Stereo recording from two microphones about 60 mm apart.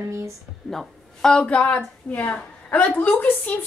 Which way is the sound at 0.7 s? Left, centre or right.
Centre.